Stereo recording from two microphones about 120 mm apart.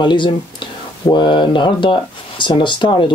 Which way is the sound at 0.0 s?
40° left (ahead or behind).